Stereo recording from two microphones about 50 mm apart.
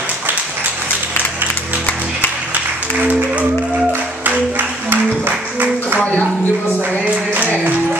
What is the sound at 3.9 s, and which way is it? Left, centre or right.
Music, right.